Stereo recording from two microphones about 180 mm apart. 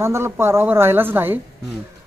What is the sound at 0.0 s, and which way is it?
Speech, 15° right (ahead or behind).